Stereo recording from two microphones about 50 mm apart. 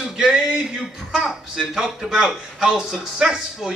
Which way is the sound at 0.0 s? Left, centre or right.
Centre.